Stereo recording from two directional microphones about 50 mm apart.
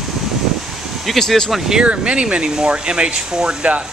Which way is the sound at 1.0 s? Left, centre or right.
Centre.